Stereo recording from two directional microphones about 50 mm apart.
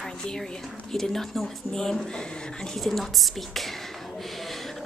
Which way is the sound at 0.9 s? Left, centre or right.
Centre.